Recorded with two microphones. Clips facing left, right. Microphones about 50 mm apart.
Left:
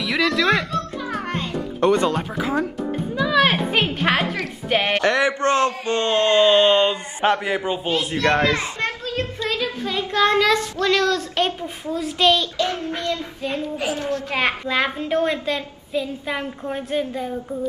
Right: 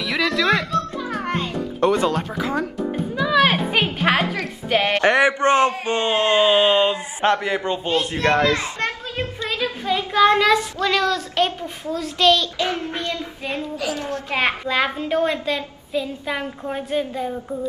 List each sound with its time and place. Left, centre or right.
0.0 s music: centre
5.0 s a man's voice: right; by 6.5 s centre
6.5 s a child's voice: centre
8.3 s a child's voice: left
9.1 s child singing: centre
9.8 s a child's voice: centre
13.1 s child singing: centre
13.7 s a woman's voice: left
14.3 s a child's voice: centre